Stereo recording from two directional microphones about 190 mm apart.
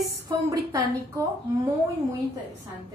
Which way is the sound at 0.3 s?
20° right (ahead or behind).